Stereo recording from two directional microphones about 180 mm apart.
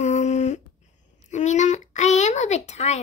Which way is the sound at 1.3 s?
40° left (ahead or behind).